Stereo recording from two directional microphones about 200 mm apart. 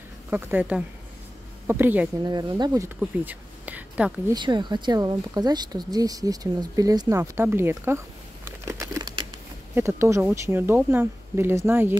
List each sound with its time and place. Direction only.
0.3 s speech: 10° right (ahead or behind)
2.3 s speech: 20° right (ahead or behind)
3.0 s speech: 10° right (ahead or behind)
4.3 s speech: 20° right (ahead or behind)
8.5 s crumpling: 15° right (ahead or behind)
9.8 s speech: 15° right (ahead or behind)